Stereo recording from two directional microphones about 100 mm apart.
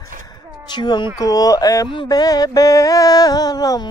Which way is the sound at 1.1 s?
35° left (ahead or behind).